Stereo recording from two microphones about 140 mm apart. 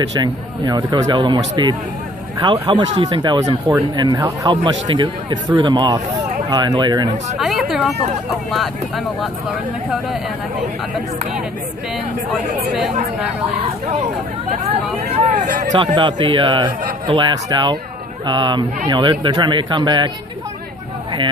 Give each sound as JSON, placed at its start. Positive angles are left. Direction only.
{"t": 0.2, "sound": "a man's voice", "side_deg": -30}
{"t": 7.3, "sound": "speech", "side_deg": 0}
{"t": 15.2, "sound": "speech", "side_deg": -65}
{"t": 15.7, "sound": "a man's voice", "side_deg": -35}